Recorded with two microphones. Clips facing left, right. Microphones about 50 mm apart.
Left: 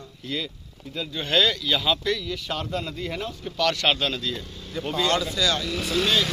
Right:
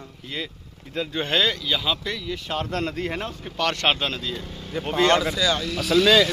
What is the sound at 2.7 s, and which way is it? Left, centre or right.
Speech, right.